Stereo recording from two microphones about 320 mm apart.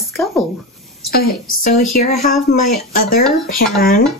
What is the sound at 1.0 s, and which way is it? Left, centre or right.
A woman's voice, left.